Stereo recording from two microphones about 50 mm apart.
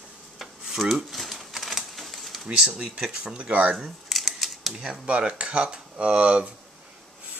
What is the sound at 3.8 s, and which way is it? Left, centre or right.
Typewriter, centre.